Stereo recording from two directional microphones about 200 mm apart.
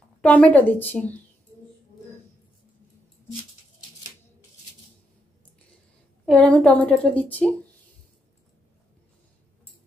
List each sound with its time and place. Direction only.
0.2 s a woman's voice: 5° left (ahead or behind)
6.2 s a woman's voice: 5° left (ahead or behind)